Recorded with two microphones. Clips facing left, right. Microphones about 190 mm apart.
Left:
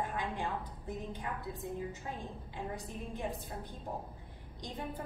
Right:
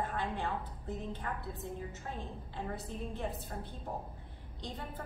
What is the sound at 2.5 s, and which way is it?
Speech, 15° left (ahead or behind).